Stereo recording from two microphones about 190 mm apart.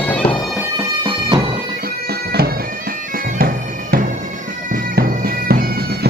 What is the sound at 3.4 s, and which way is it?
Bagpipes, 50° right (ahead or behind).